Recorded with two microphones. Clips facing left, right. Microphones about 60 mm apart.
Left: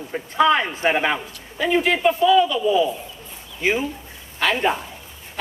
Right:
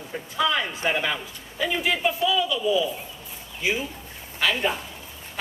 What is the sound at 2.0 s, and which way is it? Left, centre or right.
Speech, left.